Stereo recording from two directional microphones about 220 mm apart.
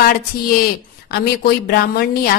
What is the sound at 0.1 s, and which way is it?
A woman's voice, 40° left (ahead or behind).